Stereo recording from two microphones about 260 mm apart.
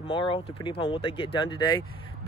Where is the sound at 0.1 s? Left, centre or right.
Centre.